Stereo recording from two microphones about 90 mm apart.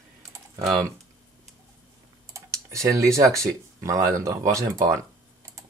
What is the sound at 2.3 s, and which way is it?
Speech, 35° right (ahead or behind).